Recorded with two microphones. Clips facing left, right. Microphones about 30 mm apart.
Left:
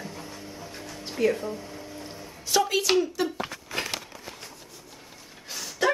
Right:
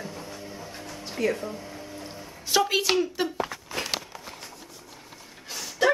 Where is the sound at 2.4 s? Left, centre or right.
Centre.